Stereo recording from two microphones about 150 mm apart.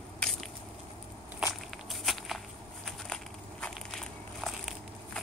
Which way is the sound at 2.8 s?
5° left (ahead or behind).